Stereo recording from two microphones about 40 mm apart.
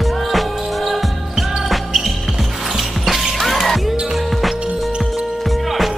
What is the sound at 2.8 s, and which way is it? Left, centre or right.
Music, centre.